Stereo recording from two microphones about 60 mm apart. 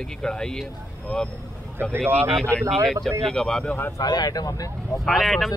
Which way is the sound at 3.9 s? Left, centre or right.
Left.